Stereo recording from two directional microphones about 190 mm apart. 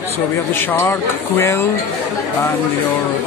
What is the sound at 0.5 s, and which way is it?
Speech, 10° left (ahead or behind).